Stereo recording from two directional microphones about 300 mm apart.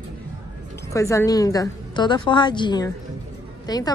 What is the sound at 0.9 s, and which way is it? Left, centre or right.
A woman's voice, centre.